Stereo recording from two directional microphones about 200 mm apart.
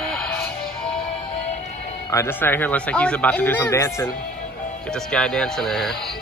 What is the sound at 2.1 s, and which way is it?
Speech, 15° left (ahead or behind).